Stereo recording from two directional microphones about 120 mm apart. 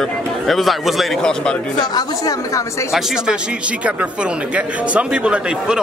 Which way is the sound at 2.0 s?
30° left (ahead or behind).